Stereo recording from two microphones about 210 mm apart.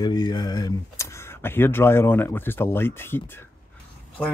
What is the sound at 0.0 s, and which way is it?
Speech, 20° left (ahead or behind).